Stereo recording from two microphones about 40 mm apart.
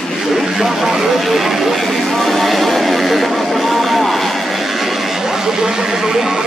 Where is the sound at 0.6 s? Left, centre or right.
Centre.